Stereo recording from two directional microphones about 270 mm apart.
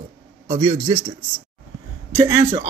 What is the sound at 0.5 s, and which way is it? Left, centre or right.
Speech, centre.